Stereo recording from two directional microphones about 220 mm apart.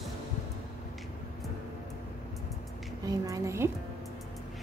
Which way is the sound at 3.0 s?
15° right (ahead or behind).